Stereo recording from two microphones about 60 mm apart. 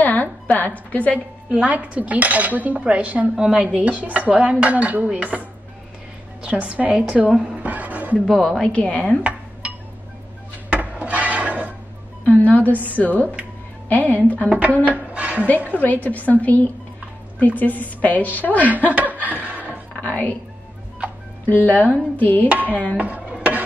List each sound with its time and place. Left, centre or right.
0.0 s a sound: left
0.9 s a woman's voice: left
1.5 s dishes: right
7.5 s a sound: right
8.3 s a woman's voice: centre
8.7 s a woman's voice: left
10.7 s dishes: right
12.3 s a woman's voice: left
14.9 s music: right
15.4 s a woman's voice: left
18.9 s dishes: right
19.2 s chuckle: right
21.5 s a woman's voice: left
22.9 s dishes: right